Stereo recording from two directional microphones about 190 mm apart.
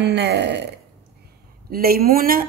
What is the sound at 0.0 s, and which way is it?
Speech, 65° right (ahead or behind).